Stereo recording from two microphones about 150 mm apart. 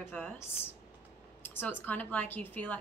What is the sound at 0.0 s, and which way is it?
A woman's voice, 15° left (ahead or behind).